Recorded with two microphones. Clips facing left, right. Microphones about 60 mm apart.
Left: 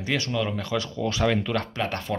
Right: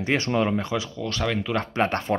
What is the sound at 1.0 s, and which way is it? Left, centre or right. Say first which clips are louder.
Speech: left 6 dB; centre.